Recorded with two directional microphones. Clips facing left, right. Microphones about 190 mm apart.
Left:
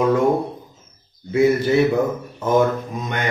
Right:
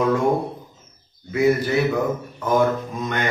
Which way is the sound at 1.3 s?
25° left (ahead or behind).